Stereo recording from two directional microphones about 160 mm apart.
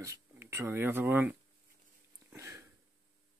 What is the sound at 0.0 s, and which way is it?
Speech, 15° right (ahead or behind).